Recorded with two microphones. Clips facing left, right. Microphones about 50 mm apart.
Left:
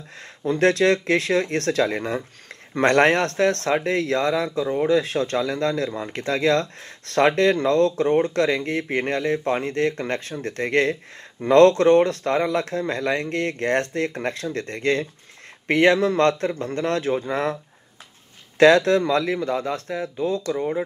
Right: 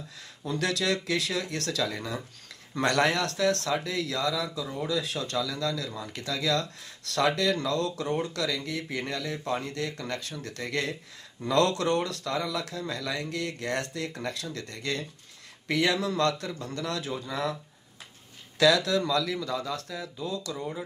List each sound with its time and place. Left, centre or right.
0.4 s speech: left
18.6 s speech: left